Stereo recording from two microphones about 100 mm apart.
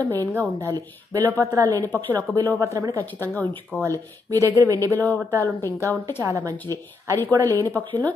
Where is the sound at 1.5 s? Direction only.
35° right (ahead or behind).